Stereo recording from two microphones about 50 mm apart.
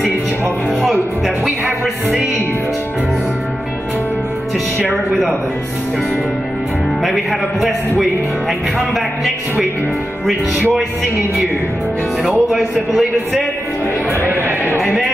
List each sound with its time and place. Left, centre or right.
0.8 s music: centre
8.9 s a man's voice: centre
12.2 s a man's voice: centre
14.2 s a sound: right